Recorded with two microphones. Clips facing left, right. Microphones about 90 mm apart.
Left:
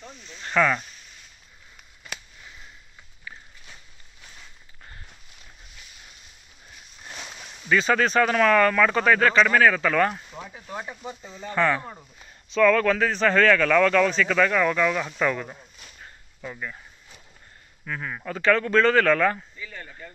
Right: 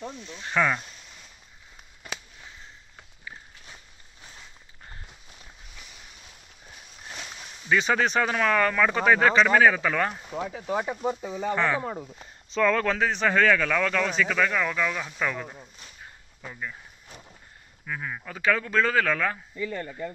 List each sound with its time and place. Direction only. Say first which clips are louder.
0.3 s speech: left 3 dB; 10° right (ahead or behind)
7.2 s a sound: left 1 dB; centre (ahead or behind)
7.7 s speech: left 2 dB; 15° right (ahead or behind)
10.4 s speech: right 9 dB; 85° right
11.0 s speech: right 9 dB; 60° right (ahead or behind)
11.5 s speech: left 4 dB; 15° right (ahead or behind)
12.0 s speech: right 8 dB; 30° right (ahead or behind); by 16.7 s 5° right (ahead or behind)
17.8 s speech: left 2 dB; 5° right (ahead or behind)